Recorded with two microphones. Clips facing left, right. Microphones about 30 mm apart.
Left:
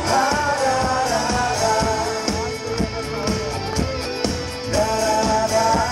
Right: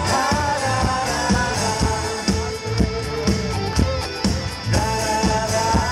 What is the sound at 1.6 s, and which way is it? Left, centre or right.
Music, centre.